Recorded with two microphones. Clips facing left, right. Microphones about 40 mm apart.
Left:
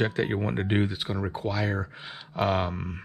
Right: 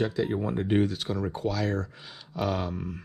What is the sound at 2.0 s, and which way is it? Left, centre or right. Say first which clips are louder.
Speech: left 3 dB; left.